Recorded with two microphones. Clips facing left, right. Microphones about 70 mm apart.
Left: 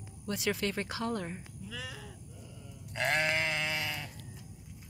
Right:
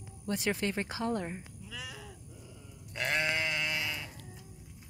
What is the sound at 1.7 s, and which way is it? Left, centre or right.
Goat, centre.